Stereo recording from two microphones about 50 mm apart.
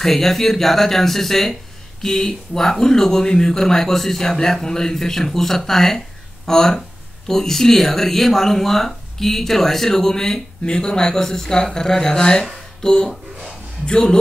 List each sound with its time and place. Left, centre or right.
0.0 s speech: centre
12.8 s a sound: centre
13.8 s speech: centre